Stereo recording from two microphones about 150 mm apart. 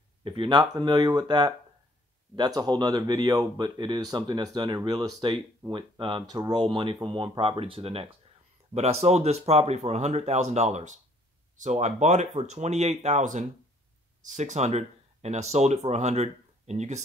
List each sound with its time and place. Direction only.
0.2 s speech: 30° right (ahead or behind); by 17.0 s 50° right (ahead or behind)